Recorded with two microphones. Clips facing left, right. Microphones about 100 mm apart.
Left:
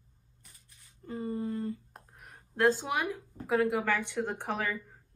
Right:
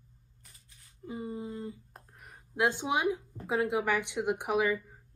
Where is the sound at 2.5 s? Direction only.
15° right (ahead or behind).